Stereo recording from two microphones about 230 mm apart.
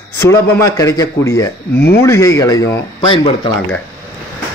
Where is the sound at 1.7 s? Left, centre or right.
Left.